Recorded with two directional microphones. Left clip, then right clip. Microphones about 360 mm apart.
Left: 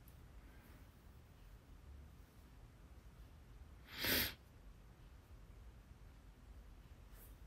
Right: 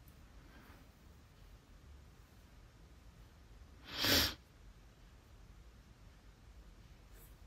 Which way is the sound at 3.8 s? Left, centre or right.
Centre.